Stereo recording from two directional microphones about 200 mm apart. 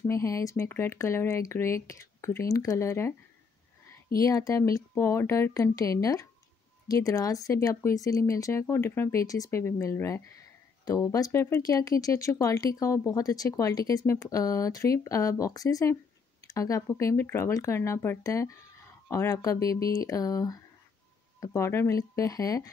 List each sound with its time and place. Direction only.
0.0 s speech: 15° left (ahead or behind)
4.2 s speech: 15° left (ahead or behind)